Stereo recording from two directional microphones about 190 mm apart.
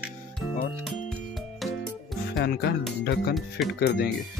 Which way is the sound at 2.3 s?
60° left (ahead or behind).